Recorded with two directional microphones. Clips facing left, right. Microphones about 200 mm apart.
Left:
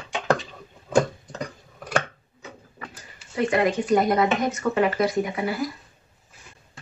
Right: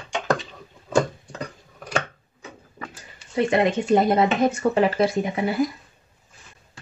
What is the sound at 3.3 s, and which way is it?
Speech, 25° right (ahead or behind).